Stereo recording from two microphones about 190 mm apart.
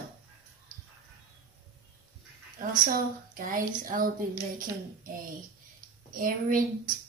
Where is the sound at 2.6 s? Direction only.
45° right (ahead or behind).